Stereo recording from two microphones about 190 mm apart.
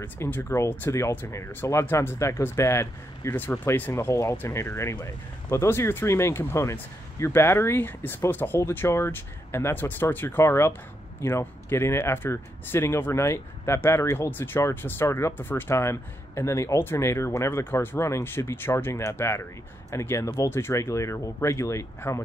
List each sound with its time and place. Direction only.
0.0 s speech: 10° left (ahead or behind)